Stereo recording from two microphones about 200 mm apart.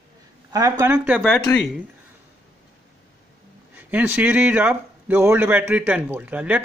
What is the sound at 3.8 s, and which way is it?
Speech, 10° right (ahead or behind).